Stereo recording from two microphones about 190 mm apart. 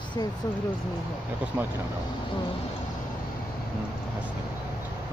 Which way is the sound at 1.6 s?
10° right (ahead or behind).